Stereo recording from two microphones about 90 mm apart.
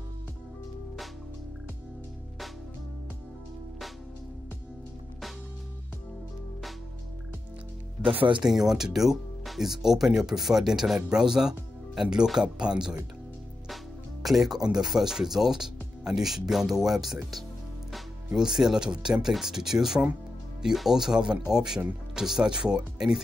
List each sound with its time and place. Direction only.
8.0 s speech: 75° right (ahead or behind)
8.5 s speech: 5° right (ahead or behind)
14.2 s speech: 5° right (ahead or behind)